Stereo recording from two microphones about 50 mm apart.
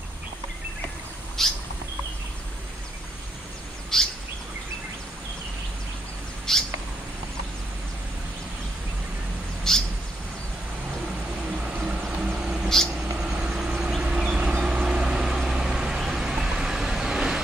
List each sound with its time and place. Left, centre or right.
1.4 s bird: centre
3.9 s bird vocalization: centre
6.5 s bird: centre
9.7 s bird: centre
12.6 s a sound: centre
13.2 s vehicle: centre